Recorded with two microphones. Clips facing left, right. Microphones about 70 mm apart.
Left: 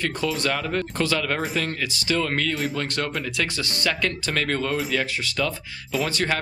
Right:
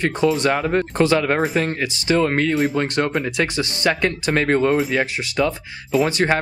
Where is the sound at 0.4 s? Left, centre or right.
Right.